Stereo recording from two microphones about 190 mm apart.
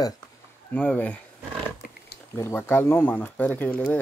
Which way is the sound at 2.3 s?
10° left (ahead or behind).